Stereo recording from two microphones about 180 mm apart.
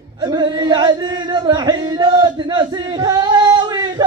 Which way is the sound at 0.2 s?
25° right (ahead or behind).